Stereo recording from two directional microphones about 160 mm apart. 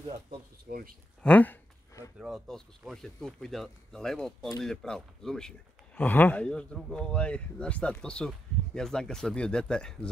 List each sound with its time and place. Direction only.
0.7 s speech: 65° right (ahead or behind)
1.2 s a sound: 10° left (ahead or behind)
2.1 s speech: centre (ahead or behind)